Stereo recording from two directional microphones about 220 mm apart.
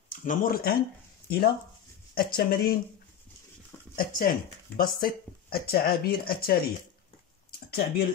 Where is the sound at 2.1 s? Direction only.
45° left (ahead or behind).